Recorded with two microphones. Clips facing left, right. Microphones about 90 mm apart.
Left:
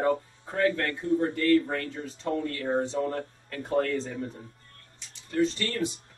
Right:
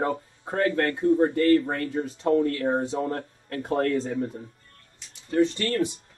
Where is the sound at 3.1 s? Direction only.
55° right (ahead or behind).